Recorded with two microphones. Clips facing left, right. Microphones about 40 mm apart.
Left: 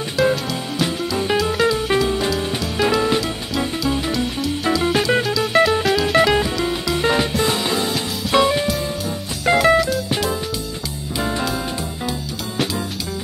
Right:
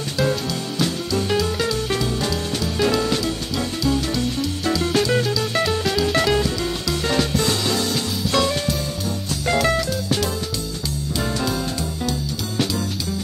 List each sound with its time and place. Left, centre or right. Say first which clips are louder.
0.2 s music: left 4 dB; centre
4.8 s music: left 1 dB; left
9.6 s music: left 6 dB; centre